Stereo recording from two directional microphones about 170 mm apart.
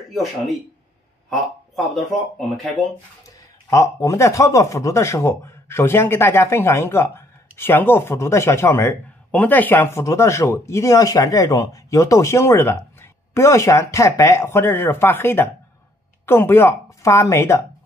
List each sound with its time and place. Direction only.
2.3 s speech: centre (ahead or behind)
3.3 s a man's voice: 20° left (ahead or behind)